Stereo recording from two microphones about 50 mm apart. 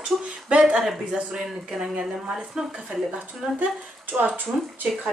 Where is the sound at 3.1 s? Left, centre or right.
Right.